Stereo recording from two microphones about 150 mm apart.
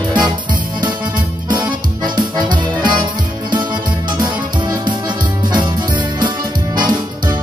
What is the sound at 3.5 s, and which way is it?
Music, 30° right (ahead or behind).